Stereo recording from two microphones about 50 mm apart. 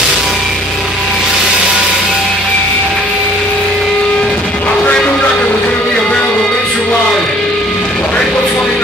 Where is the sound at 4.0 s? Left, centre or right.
Centre.